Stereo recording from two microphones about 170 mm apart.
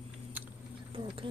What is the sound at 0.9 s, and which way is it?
Bee, 30° right (ahead or behind).